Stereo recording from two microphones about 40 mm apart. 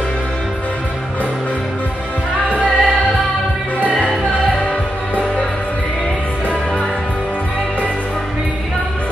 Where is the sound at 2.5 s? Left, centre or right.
Right.